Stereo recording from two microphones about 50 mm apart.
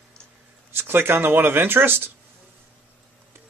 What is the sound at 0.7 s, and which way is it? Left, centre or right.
Speech, right.